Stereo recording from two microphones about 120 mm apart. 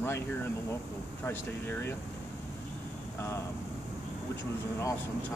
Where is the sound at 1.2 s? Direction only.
20° left (ahead or behind).